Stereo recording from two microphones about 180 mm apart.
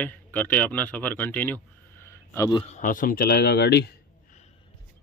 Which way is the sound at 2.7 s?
50° left (ahead or behind).